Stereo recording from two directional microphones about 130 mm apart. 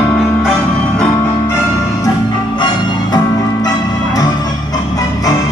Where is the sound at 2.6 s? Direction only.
35° left (ahead or behind).